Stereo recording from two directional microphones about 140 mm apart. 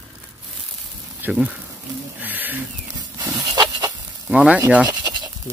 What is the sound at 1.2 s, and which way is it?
Speech, 10° right (ahead or behind).